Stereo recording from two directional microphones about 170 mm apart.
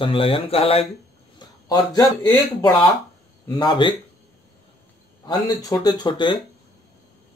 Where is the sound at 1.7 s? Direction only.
25° left (ahead or behind).